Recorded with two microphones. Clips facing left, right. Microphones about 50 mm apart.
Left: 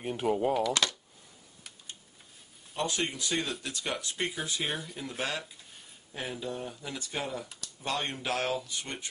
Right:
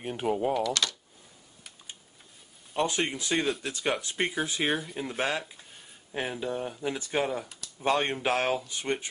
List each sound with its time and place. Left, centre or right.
0.0 s speech: centre
2.7 s speech: right
4.6 s speech: centre
4.9 s speech: right